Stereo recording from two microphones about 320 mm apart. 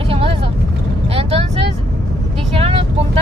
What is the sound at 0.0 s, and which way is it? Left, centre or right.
Vehicle, centre.